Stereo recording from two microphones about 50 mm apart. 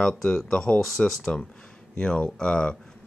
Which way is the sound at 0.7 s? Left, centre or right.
Centre.